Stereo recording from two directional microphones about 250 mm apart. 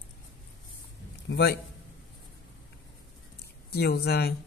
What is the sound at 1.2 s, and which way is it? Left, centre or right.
Speech, left.